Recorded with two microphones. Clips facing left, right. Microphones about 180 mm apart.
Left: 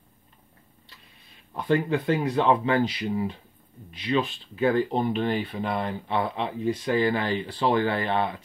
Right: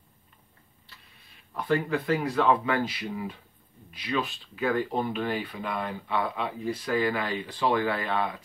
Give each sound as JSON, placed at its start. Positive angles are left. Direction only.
{"t": 1.5, "sound": "speech", "side_deg": 25}